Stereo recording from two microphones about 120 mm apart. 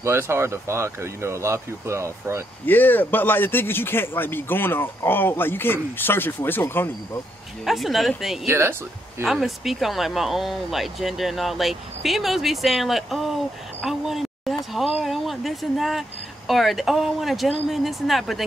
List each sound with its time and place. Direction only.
0.0 s speech: 20° right (ahead or behind)
2.6 s a man's voice: 15° left (ahead or behind)
7.6 s speech: centre (ahead or behind)
8.5 s speech: 20° right (ahead or behind)
9.2 s speech: centre (ahead or behind)